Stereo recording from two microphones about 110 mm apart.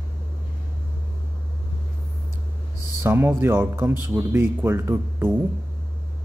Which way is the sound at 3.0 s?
20° right (ahead or behind).